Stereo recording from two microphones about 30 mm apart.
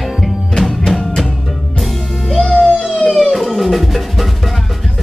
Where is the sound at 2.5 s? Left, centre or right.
Left.